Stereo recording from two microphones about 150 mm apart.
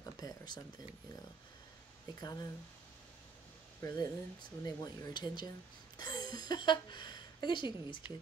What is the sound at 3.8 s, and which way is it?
A woman's voice, 25° left (ahead or behind).